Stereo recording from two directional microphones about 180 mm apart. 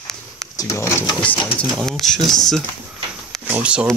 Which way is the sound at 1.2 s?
5° left (ahead or behind).